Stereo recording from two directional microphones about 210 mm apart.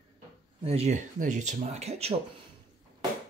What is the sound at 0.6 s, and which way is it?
Speech, 30° right (ahead or behind).